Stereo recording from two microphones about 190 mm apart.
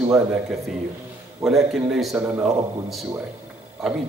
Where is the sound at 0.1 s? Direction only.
5° right (ahead or behind).